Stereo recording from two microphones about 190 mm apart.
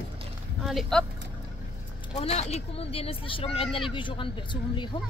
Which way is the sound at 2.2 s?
35° left (ahead or behind).